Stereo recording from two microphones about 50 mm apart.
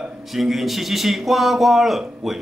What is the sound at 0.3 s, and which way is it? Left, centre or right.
Speech, centre.